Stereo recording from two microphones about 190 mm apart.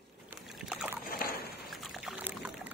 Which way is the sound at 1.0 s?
50° left (ahead or behind).